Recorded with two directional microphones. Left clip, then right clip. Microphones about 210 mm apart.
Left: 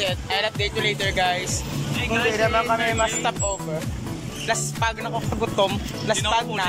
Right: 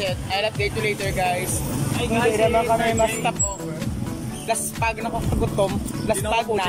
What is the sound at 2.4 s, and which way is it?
Speech, 15° right (ahead or behind).